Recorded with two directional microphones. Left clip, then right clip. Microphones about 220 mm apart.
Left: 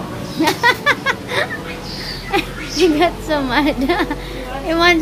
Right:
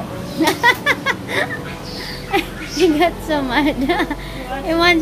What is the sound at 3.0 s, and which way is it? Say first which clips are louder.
A woman's voice: left 1 dB; 5° left (ahead or behind).